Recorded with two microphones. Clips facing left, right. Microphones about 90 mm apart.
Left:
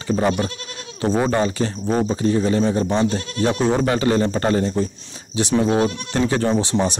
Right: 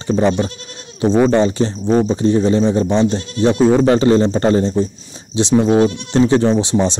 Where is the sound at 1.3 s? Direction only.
25° right (ahead or behind).